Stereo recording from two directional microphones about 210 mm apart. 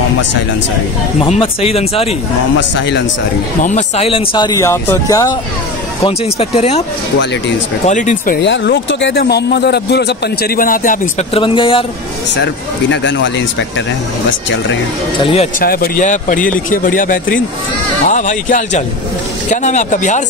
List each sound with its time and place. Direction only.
1.2 s speech: 25° left (ahead or behind)
3.6 s speech: 30° left (ahead or behind); by 5.3 s 15° left (ahead or behind)
6.0 s speech: 30° left (ahead or behind)
7.8 s speech: 35° left (ahead or behind)
8.4 s speech: 55° left (ahead or behind); by 11.8 s 25° left (ahead or behind)
12.9 s speech: 60° left (ahead or behind)
15.1 s speech: 25° left (ahead or behind)
15.6 s speech: 45° left (ahead or behind)